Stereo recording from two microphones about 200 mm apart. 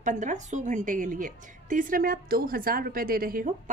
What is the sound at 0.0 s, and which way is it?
A woman's voice, 35° right (ahead or behind).